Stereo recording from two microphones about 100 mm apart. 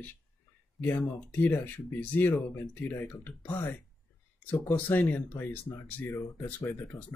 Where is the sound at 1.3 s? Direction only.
20° left (ahead or behind).